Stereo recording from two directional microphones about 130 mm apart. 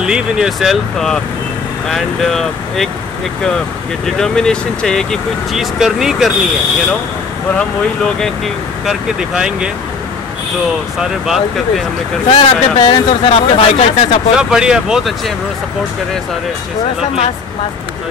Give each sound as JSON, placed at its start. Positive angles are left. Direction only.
{"t": 0.0, "sound": "speech", "side_deg": -5}
{"t": 7.5, "sound": "speech", "side_deg": 5}
{"t": 11.0, "sound": "speech", "side_deg": 0}
{"t": 12.3, "sound": "speech", "side_deg": 45}
{"t": 14.3, "sound": "speech", "side_deg": -5}